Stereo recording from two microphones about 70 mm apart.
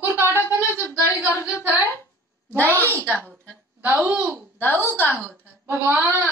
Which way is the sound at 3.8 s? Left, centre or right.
Right.